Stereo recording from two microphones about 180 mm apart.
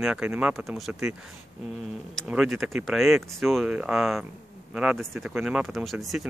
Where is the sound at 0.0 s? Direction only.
5° right (ahead or behind).